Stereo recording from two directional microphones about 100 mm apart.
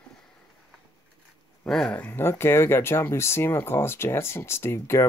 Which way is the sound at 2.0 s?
25° left (ahead or behind).